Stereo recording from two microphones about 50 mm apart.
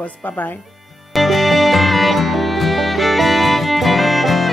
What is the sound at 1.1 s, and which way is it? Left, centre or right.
Music, centre.